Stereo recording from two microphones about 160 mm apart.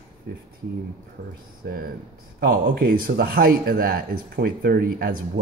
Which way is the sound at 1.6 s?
65° right (ahead or behind).